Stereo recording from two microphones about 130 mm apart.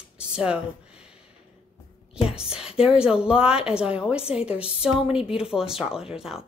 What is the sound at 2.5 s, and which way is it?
A woman's voice, 5° right (ahead or behind).